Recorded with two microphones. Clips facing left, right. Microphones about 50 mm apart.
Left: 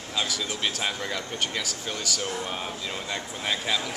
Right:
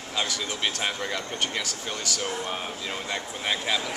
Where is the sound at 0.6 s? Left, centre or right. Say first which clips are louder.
Right 2 dB; centre.